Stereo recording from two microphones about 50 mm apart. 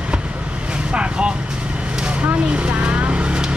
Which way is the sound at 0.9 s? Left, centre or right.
Right.